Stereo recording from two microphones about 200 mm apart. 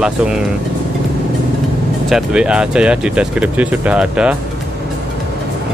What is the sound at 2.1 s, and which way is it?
Speech, 5° right (ahead or behind).